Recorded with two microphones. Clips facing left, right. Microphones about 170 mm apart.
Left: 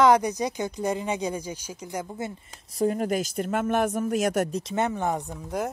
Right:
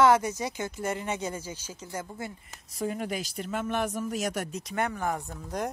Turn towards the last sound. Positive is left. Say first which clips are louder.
# left 3 dB
turn(degrees=5)  # may be behind; listen again after turning